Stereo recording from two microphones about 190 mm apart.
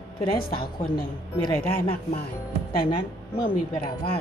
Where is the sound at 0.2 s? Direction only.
25° left (ahead or behind).